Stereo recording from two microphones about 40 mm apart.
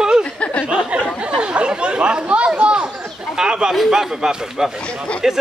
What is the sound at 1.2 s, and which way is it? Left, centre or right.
Chatter, right.